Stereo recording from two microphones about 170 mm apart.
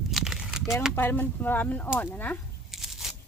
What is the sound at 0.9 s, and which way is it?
Speech, 10° left (ahead or behind).